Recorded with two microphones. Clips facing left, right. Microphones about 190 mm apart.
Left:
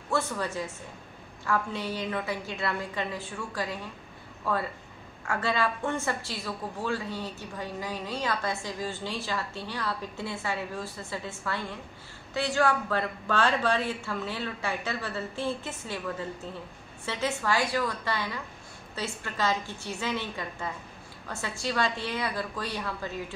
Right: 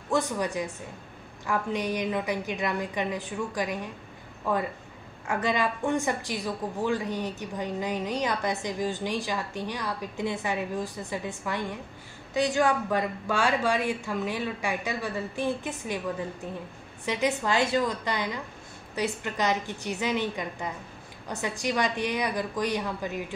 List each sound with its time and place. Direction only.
0.1 s a woman's voice: 15° right (ahead or behind)